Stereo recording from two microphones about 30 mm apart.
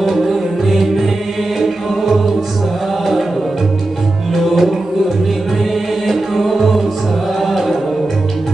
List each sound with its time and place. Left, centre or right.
0.0 s music: centre
1.6 s choir: centre
4.3 s music: centre
6.0 s music: centre